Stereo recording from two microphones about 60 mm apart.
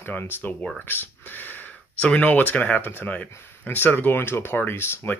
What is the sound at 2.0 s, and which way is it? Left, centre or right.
Speech, centre.